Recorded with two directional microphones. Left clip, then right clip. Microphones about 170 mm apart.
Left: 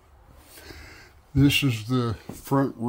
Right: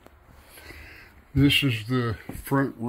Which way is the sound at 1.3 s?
15° left (ahead or behind).